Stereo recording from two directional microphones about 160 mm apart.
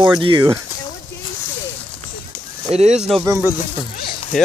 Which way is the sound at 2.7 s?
40° right (ahead or behind).